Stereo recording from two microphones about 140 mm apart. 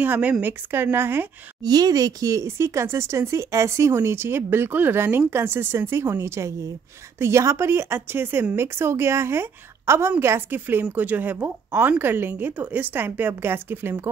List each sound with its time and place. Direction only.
0.0 s speech: 10° right (ahead or behind)
1.6 s speech: 30° right (ahead or behind)